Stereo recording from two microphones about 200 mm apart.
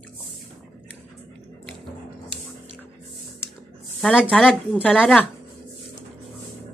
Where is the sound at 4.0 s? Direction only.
Centre (ahead or behind).